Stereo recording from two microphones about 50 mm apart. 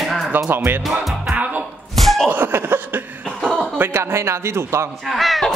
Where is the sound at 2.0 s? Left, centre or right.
Centre.